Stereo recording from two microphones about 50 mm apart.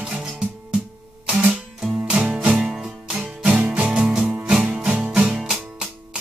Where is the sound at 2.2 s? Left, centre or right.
Centre.